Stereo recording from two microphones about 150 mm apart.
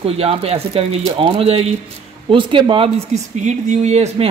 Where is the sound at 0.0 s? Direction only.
40° right (ahead or behind).